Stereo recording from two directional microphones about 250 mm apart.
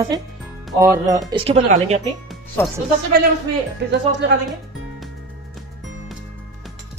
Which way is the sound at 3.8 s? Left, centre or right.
Right.